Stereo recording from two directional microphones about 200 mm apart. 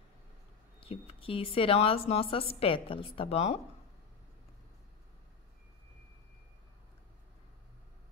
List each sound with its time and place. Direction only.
0.7 s a woman's voice: 30° left (ahead or behind)